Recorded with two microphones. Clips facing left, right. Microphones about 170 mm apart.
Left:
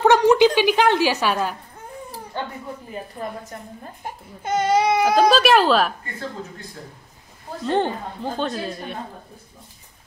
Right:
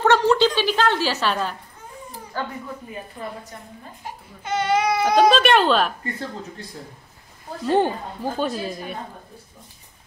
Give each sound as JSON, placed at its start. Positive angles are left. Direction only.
{"t": 0.0, "sound": "a sound", "side_deg": 15}
{"t": 0.6, "sound": "a woman's voice", "side_deg": 15}
{"t": 2.3, "sound": "speech", "side_deg": 25}
{"t": 4.0, "sound": "baby cry", "side_deg": 45}
{"t": 5.0, "sound": "a woman's voice", "side_deg": 0}
{"t": 7.6, "sound": "a woman's voice", "side_deg": -10}